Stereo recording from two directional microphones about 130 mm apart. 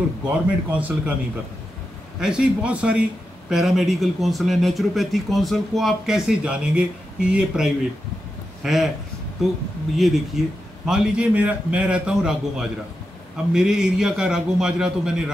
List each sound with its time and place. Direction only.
0.3 s a man's voice: 10° right (ahead or behind)
2.1 s a man's voice: 5° right (ahead or behind)